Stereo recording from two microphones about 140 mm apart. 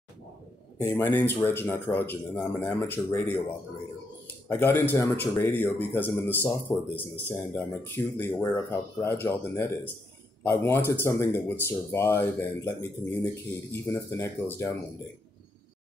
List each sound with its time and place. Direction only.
0.9 s speech: 15° left (ahead or behind)
4.5 s speech: 15° left (ahead or behind)